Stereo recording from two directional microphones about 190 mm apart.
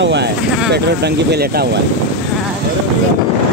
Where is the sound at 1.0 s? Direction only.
55° right (ahead or behind).